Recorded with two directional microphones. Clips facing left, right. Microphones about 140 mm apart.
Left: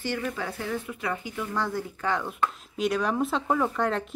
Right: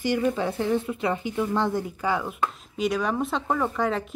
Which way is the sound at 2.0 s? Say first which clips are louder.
Even; 10° right (ahead or behind).